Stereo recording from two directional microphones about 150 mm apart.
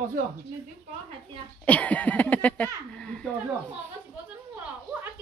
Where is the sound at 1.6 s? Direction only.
10° left (ahead or behind).